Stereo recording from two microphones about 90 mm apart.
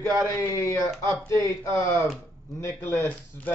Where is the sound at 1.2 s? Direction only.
35° left (ahead or behind).